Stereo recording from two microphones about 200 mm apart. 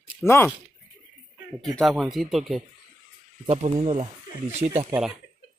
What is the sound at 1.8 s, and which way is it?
Speech, centre (ahead or behind).